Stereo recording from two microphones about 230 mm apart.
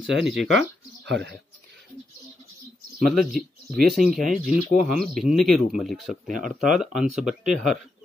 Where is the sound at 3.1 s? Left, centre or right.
Centre.